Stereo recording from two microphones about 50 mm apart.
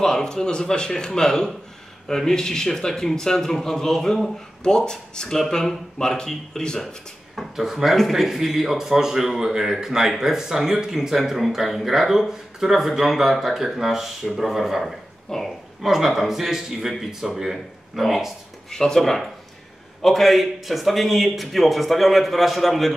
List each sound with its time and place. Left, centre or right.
0.0 s speech: centre
7.3 s speech: centre
15.2 s a woman's voice: centre
15.8 s a man's voice: centre
18.7 s a man's voice: centre